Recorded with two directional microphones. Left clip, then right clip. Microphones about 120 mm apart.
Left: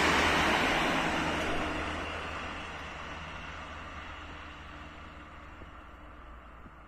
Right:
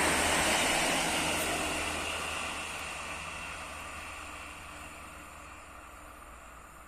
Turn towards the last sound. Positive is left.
turn(degrees=-20)  # may be behind; listen again after turning